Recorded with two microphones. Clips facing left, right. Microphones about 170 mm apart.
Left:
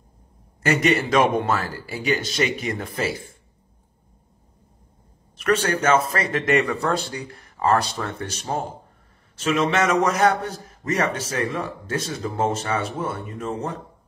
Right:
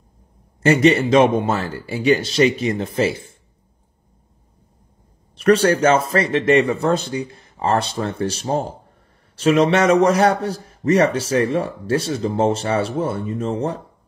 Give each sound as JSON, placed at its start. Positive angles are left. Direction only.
{"t": 0.6, "sound": "speech", "side_deg": -30}
{"t": 5.4, "sound": "speech", "side_deg": -35}
{"t": 5.9, "sound": "speech", "side_deg": -25}